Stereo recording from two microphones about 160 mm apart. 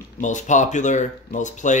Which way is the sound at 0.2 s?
50° left (ahead or behind).